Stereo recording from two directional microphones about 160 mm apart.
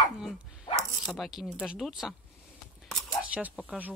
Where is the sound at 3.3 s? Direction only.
10° right (ahead or behind).